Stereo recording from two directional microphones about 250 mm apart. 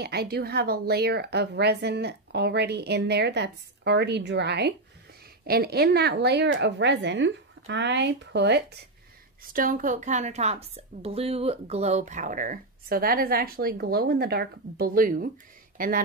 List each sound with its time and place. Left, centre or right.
0.0 s a woman's voice: right